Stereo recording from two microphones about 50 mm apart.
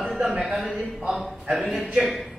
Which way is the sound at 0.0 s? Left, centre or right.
Centre.